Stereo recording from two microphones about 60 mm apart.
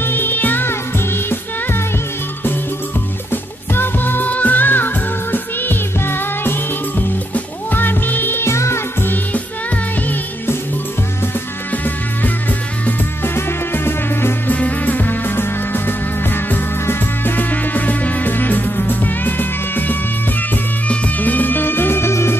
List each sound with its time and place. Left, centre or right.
0.0 s music: left
3.3 s music: left
8.5 s music: left
9.0 s music: left
11.7 s music: left
14.5 s music: left
21.2 s music: left